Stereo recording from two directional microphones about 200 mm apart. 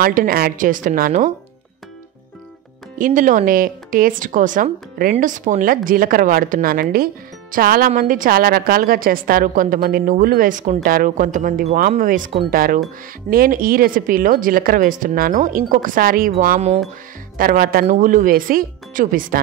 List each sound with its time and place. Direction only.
0.0 s a woman's voice: 45° right (ahead or behind)
3.0 s a woman's voice: 40° right (ahead or behind)